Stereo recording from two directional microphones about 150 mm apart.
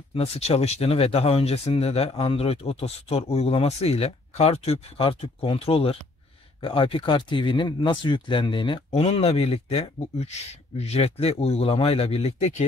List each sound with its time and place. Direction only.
0.1 s speech: 40° left (ahead or behind)